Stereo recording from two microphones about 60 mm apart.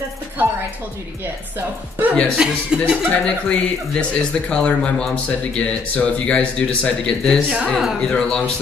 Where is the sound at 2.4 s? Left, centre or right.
Centre.